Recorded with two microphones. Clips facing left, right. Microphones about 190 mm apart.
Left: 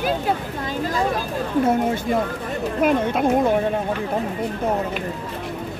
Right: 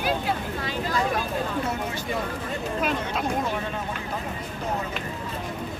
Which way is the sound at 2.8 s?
55° left (ahead or behind).